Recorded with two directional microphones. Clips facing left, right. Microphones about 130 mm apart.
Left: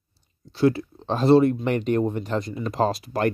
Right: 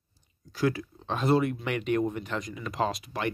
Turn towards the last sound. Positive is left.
turn(degrees=40)  # may be behind; listen again after turning